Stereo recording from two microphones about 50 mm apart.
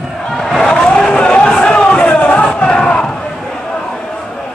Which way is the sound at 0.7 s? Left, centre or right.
Centre.